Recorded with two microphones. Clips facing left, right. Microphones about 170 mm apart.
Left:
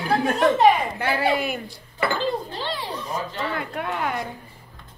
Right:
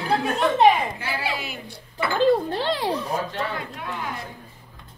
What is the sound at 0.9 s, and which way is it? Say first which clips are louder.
Speech: left 7 dB; 55° left (ahead or behind).